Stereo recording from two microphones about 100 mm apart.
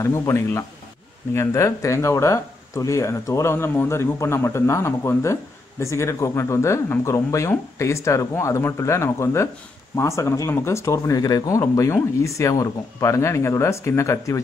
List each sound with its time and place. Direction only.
0.0 s speech: 30° left (ahead or behind)